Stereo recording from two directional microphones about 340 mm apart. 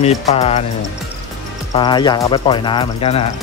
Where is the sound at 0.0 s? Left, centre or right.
Centre.